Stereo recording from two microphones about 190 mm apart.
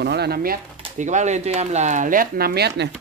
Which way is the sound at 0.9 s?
40° right (ahead or behind).